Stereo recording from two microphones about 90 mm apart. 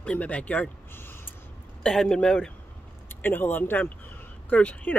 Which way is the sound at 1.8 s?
10° left (ahead or behind).